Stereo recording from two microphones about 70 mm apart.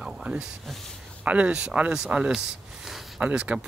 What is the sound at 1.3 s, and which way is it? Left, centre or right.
Speech, centre.